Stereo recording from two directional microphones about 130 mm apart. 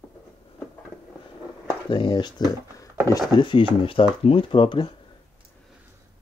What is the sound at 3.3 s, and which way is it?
Speech, 40° left (ahead or behind).